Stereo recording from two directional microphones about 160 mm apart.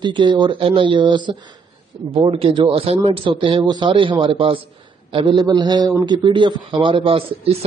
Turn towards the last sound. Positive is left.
turn(degrees=-35)  # may be behind; listen again after turning